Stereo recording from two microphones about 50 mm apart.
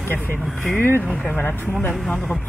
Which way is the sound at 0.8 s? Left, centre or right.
Left.